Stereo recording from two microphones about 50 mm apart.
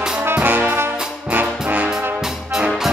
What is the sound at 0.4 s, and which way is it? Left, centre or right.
Brass instrument, right.